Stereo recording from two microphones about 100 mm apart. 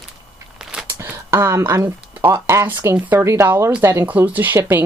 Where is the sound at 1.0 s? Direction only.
25° right (ahead or behind).